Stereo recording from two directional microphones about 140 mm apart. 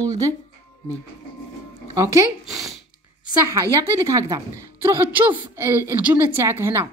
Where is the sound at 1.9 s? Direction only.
20° right (ahead or behind).